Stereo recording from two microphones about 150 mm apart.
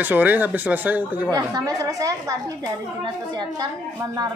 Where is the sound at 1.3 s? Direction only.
25° right (ahead or behind).